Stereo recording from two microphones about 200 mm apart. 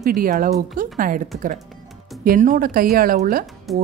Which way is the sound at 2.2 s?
40° right (ahead or behind).